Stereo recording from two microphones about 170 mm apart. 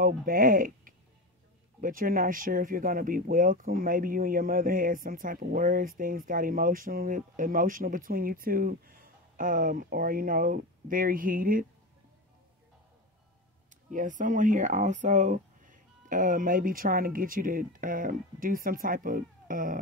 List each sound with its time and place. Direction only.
0.0 s speech: 55° right (ahead or behind)
13.7 s speech: 50° right (ahead or behind)